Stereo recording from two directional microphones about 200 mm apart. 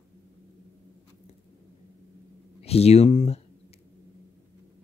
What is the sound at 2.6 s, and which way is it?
Speech, 30° left (ahead or behind).